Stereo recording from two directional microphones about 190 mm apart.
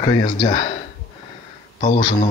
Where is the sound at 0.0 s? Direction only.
20° left (ahead or behind).